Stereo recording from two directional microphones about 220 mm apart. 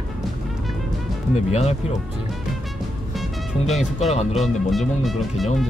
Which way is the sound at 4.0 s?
30° left (ahead or behind).